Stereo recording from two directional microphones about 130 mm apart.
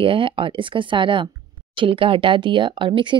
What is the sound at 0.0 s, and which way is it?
Speech, 40° right (ahead or behind).